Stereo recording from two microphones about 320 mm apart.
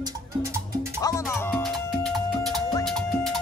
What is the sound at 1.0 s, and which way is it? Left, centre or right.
Music, centre.